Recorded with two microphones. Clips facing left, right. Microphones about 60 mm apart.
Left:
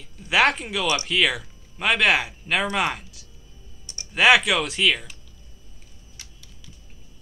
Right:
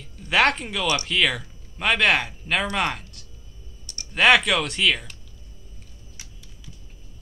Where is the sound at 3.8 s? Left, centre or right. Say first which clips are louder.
Even; left.